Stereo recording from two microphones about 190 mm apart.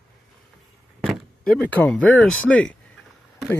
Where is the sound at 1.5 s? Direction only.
10° left (ahead or behind).